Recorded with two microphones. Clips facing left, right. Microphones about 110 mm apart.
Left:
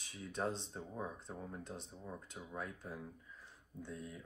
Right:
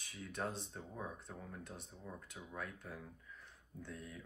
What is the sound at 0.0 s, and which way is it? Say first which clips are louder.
Speech: left 3 dB; 20° left (ahead or behind).